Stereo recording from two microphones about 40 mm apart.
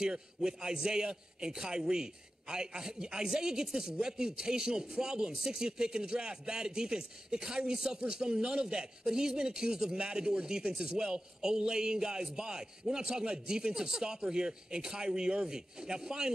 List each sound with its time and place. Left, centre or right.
0.0 s a man's voice: centre